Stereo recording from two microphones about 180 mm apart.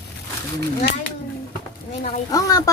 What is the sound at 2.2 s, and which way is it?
Speech, 20° left (ahead or behind).